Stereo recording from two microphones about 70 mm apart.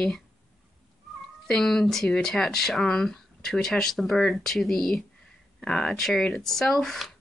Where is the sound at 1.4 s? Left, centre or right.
Centre.